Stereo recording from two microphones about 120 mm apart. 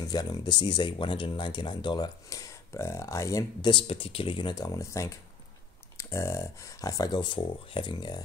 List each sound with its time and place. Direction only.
0.1 s speech: 35° left (ahead or behind)
3.7 s speech: 50° left (ahead or behind)